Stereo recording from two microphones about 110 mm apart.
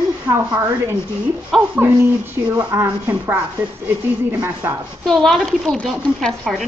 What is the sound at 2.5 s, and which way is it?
Speech, 25° right (ahead or behind).